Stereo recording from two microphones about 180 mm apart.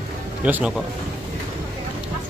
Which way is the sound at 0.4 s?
5° right (ahead or behind).